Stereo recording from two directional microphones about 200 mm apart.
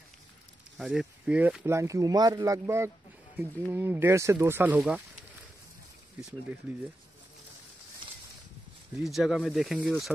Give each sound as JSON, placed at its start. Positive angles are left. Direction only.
{"t": 0.7, "sound": "speech", "side_deg": -5}
{"t": 9.0, "sound": "speech", "side_deg": 0}